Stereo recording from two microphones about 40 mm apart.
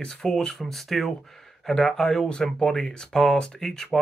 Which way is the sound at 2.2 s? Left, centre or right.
Left.